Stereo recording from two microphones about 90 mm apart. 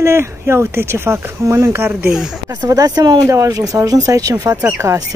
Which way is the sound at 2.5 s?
45° right (ahead or behind).